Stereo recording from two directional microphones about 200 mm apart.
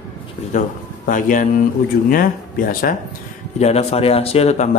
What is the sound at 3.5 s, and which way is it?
A man's voice, 30° left (ahead or behind).